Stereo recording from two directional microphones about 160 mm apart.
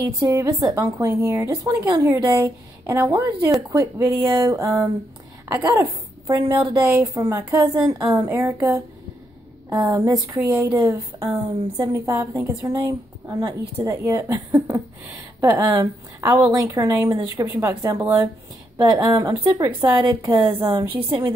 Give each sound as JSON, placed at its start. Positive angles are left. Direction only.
{"t": 0.0, "sound": "a woman's voice", "side_deg": -20}